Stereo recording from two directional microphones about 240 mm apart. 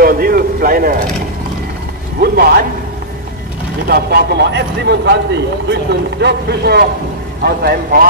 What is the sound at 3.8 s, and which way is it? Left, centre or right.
A man's voice, right.